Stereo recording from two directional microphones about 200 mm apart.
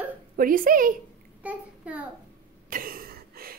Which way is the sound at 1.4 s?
5° right (ahead or behind).